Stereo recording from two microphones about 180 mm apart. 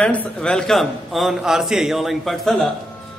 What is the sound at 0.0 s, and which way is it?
A man's voice, 5° left (ahead or behind).